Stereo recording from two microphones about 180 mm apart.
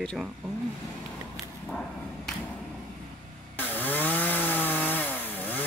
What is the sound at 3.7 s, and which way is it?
Chainsaw, 10° left (ahead or behind).